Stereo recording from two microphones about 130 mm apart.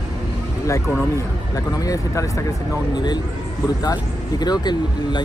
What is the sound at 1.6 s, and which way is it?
Speech, 25° left (ahead or behind).